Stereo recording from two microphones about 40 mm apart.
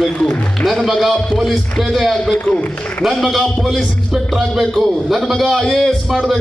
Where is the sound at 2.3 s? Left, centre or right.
Left.